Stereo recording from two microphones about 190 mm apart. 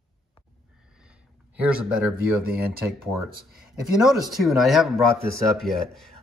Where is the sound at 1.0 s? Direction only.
5° right (ahead or behind).